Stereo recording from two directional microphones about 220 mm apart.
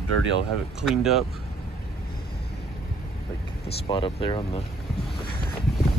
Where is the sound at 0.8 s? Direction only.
Centre (ahead or behind).